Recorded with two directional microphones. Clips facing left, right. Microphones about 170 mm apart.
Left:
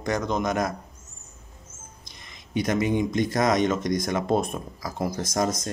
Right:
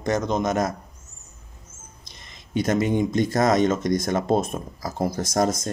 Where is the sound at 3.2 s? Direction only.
25° right (ahead or behind).